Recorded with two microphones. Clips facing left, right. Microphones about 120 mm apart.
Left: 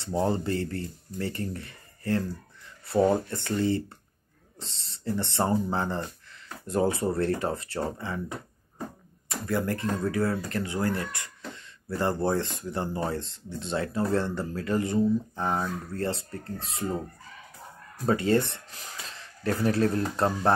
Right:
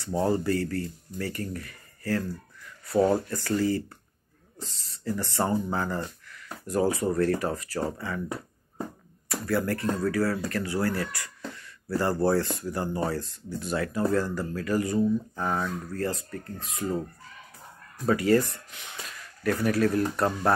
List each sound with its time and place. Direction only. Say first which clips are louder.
0.0 s speech: right 1 dB; 25° left (ahead or behind)
18.0 s speech: right 1 dB; 25° left (ahead or behind)